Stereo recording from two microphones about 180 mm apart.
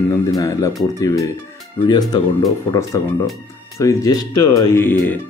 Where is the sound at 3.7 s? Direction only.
20° left (ahead or behind).